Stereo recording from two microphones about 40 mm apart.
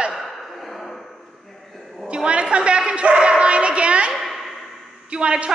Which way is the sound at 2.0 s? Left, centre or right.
Right.